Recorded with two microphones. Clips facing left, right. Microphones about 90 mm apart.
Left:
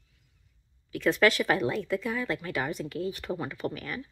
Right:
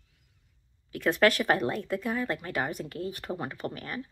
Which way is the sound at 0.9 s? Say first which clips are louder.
Even; 50° right (ahead or behind).